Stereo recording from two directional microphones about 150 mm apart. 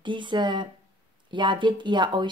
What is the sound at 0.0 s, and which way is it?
Speech, 30° right (ahead or behind).